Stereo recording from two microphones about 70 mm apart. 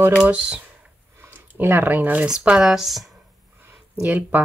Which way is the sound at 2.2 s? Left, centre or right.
Centre.